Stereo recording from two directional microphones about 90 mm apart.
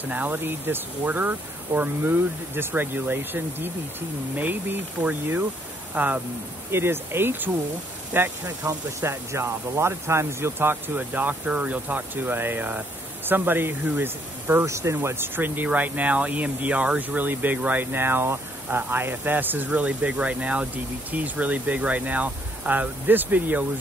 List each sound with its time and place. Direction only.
0.0 s speech: 20° right (ahead or behind)